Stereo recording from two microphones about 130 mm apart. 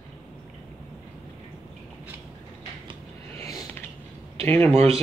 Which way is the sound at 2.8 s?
45° right (ahead or behind).